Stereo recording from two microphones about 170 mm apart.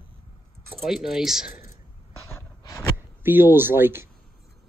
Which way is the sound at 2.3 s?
15° left (ahead or behind).